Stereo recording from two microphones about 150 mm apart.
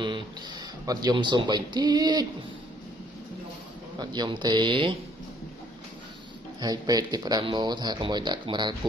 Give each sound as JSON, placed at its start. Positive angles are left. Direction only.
{"t": 0.8, "sound": "speech", "side_deg": -30}
{"t": 4.0, "sound": "speech", "side_deg": -30}
{"t": 6.6, "sound": "speech", "side_deg": -25}